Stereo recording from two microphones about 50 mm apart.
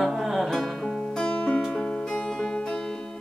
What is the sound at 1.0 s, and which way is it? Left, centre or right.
Music, centre.